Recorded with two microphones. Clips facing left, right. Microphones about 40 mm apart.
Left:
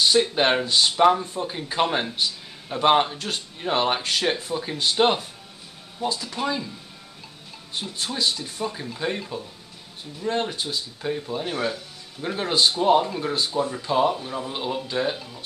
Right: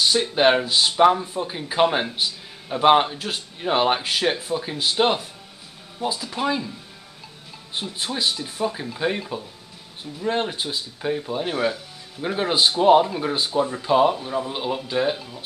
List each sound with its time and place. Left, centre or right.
0.0 s speech: centre
8.0 s speech: centre